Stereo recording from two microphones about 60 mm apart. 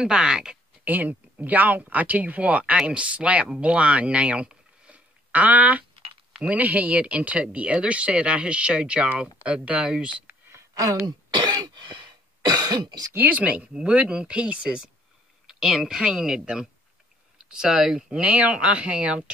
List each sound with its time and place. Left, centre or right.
0.0 s speech: centre
0.8 s speech: right
10.5 s a sound: right
13.1 s speech: right